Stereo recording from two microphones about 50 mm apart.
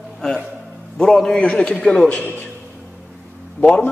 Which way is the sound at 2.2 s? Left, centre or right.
Left.